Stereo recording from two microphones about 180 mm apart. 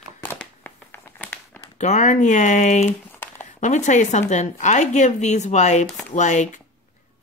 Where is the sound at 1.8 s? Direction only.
40° left (ahead or behind).